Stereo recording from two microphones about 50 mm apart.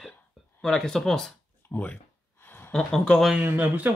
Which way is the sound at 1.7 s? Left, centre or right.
Left.